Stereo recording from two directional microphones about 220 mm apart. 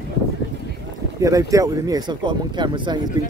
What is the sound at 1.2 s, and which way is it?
Speech, 15° right (ahead or behind).